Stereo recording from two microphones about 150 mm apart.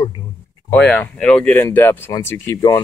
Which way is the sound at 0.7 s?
10° left (ahead or behind).